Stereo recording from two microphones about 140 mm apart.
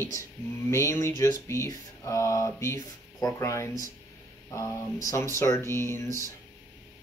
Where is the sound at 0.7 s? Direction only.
20° left (ahead or behind).